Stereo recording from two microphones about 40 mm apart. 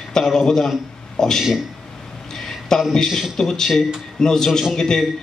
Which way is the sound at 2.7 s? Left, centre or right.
Centre.